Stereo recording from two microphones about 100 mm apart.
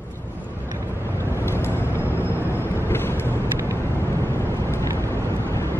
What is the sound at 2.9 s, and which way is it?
Vehicle, 25° left (ahead or behind).